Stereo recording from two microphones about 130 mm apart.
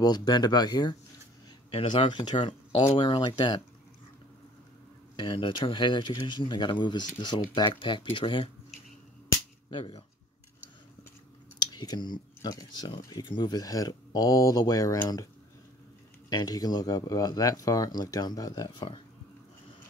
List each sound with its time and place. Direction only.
0.0 s speech: 35° left (ahead or behind)
1.7 s speech: 45° left (ahead or behind)
5.1 s speech: 40° left (ahead or behind)
9.7 s speech: 40° left (ahead or behind)
11.6 s speech: 30° left (ahead or behind)
16.3 s speech: 30° left (ahead or behind)